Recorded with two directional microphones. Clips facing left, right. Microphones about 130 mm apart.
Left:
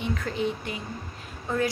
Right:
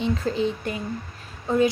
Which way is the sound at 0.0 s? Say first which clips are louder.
Right 5 dB; 30° right (ahead or behind).